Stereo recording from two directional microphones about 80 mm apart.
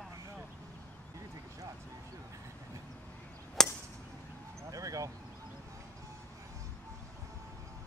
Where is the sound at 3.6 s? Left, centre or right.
Centre.